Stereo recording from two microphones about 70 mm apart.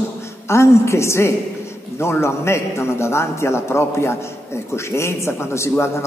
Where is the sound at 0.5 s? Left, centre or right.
Left.